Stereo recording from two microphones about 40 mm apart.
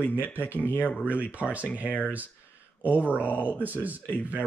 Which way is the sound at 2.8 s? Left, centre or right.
Right.